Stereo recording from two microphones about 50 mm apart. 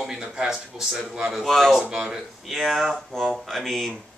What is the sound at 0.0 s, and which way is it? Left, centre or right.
A man's voice, centre.